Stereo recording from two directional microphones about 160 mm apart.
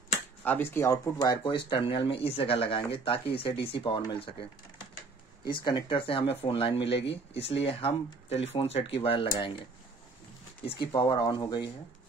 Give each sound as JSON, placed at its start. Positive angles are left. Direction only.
{"t": 0.4, "sound": "speech", "side_deg": 15}
{"t": 10.9, "sound": "speech", "side_deg": 30}